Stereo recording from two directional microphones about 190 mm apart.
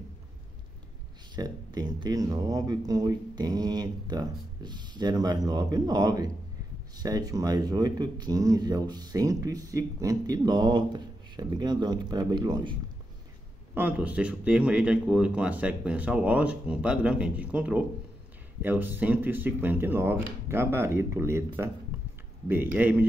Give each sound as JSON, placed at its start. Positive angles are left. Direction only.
{"t": 1.3, "sound": "speech", "side_deg": -20}
{"t": 13.7, "sound": "speech", "side_deg": -10}